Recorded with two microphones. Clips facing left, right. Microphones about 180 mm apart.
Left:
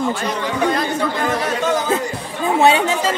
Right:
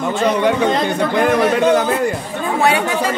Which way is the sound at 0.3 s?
60° right (ahead or behind).